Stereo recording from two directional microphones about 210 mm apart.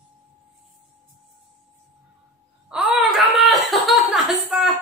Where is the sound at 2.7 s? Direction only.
5° right (ahead or behind).